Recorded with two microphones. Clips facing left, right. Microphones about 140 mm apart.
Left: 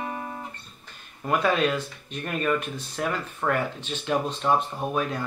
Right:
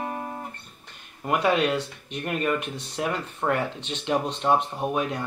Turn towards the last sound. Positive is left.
turn(degrees=-20)  # may be behind; listen again after turning